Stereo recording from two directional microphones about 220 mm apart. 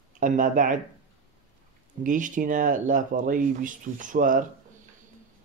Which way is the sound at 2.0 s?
35° right (ahead or behind).